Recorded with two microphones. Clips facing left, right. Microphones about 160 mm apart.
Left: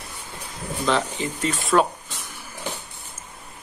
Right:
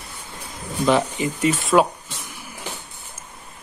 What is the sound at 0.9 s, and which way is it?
Speech, 10° right (ahead or behind).